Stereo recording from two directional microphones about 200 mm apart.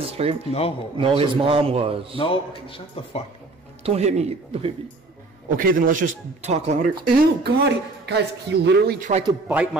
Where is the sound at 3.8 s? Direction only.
30° right (ahead or behind).